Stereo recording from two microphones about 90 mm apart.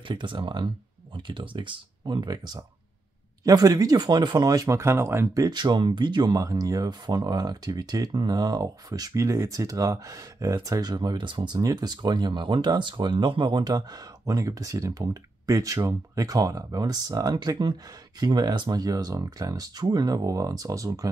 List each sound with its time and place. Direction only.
0.1 s speech: 65° right (ahead or behind); by 5.5 s 35° right (ahead or behind)
5.5 s speech: 55° right (ahead or behind); by 21.1 s 40° right (ahead or behind)